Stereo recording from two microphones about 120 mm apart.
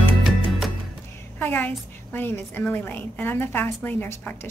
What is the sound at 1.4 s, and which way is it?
A woman's voice, 15° left (ahead or behind).